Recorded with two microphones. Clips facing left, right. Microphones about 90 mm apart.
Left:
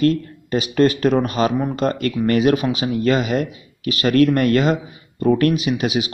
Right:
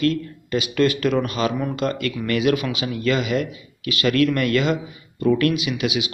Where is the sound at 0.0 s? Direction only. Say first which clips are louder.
Left 4 dB; 40° left (ahead or behind).